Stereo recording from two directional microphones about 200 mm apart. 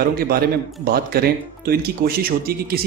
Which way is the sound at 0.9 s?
50° right (ahead or behind).